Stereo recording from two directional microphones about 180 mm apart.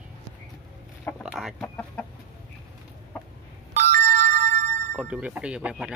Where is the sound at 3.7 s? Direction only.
50° right (ahead or behind).